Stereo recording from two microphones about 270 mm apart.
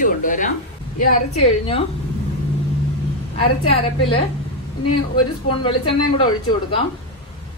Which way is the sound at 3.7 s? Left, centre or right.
Left.